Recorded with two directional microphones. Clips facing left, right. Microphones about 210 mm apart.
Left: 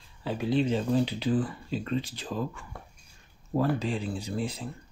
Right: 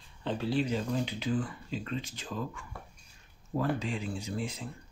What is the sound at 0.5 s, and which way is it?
Speech, 25° left (ahead or behind).